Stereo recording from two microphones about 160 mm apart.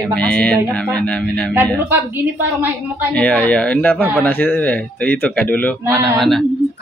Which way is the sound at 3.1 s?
10° left (ahead or behind).